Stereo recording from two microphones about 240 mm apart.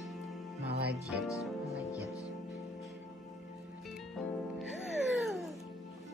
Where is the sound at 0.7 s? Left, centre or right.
Right.